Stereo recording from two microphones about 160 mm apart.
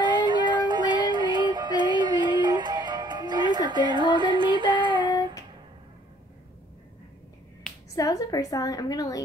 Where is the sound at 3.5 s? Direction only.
25° right (ahead or behind).